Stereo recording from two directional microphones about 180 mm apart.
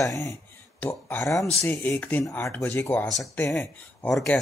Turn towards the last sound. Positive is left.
turn(degrees=5)  # may be behind; listen again after turning